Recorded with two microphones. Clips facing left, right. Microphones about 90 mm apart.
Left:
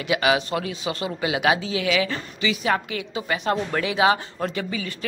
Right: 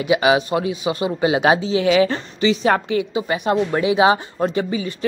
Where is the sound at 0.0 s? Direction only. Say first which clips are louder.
Right 5 dB; 20° right (ahead or behind).